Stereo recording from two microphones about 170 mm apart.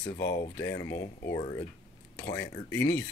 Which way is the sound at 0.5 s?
15° left (ahead or behind).